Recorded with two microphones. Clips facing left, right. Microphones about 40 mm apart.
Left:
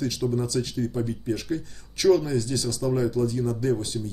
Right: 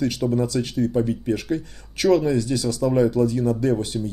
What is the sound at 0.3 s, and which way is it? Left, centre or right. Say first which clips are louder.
Speech: right 4 dB; right.